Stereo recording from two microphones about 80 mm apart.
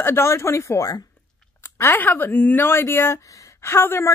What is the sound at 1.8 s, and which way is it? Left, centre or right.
A woman's voice, left.